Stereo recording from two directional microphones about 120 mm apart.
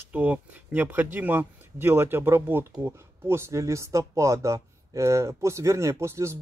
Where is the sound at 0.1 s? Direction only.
10° right (ahead or behind).